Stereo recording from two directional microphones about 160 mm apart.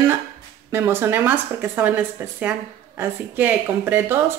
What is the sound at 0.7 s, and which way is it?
Speech, 15° right (ahead or behind).